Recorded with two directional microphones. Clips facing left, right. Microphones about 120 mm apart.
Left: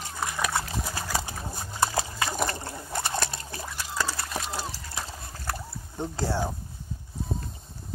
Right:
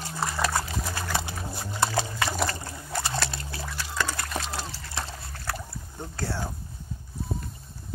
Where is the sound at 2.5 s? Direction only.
25° left (ahead or behind); by 5.2 s 5° left (ahead or behind).